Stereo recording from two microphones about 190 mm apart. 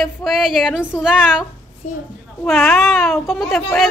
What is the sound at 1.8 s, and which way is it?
Speech, 40° left (ahead or behind).